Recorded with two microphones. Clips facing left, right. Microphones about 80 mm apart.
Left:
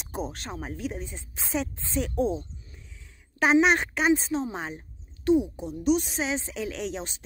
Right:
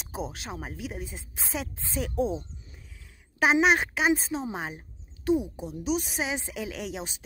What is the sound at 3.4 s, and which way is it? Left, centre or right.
A woman's voice, centre.